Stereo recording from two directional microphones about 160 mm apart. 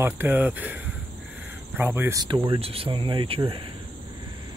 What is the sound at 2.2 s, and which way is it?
Speech, 30° right (ahead or behind).